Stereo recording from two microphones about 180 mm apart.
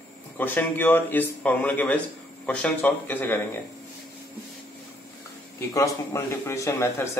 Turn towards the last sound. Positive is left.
turn(degrees=15)  # may be behind; listen again after turning